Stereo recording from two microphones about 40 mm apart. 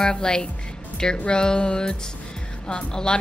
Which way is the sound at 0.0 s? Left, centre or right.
Centre.